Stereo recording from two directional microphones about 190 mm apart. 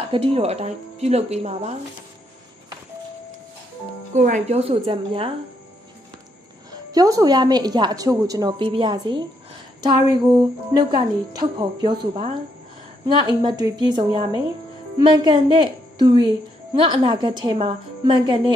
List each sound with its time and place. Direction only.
0.1 s speech: 30° right (ahead or behind)
4.1 s speech: 40° right (ahead or behind)
6.7 s a woman's voice: 20° right (ahead or behind)
13.0 s a woman's voice: 20° right (ahead or behind)